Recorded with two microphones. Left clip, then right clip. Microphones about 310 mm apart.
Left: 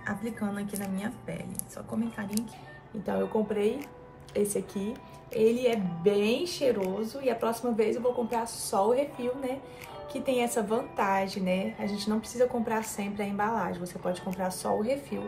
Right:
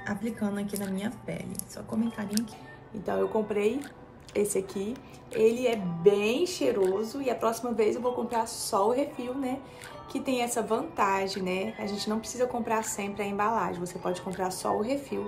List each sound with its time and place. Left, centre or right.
0.0 s a woman's voice: centre
3.1 s a woman's voice: centre